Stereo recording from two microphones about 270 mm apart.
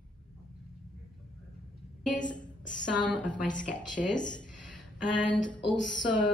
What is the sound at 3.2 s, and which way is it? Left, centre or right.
Speech, left.